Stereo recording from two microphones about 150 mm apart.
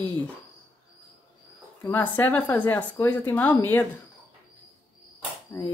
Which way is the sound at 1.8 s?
10° left (ahead or behind).